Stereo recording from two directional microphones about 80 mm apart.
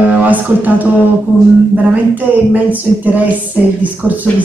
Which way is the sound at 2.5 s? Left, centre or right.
Centre.